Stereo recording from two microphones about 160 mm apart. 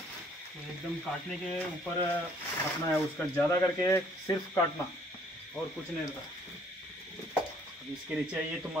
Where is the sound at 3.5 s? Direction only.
15° left (ahead or behind).